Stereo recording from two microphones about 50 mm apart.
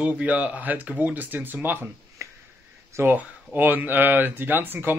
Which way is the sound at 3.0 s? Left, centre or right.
Right.